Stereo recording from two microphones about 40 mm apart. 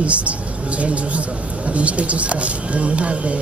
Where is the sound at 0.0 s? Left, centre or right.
Right.